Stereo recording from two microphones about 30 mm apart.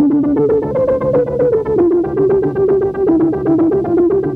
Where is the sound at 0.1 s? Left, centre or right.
Centre.